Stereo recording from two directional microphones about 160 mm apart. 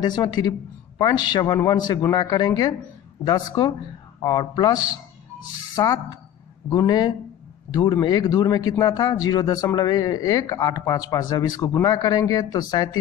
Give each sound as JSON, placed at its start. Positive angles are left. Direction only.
{"t": 0.0, "sound": "a man's voice", "side_deg": 25}
{"t": 5.8, "sound": "a man's voice", "side_deg": 20}